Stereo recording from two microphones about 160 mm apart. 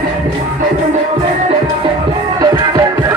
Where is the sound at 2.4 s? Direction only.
25° right (ahead or behind).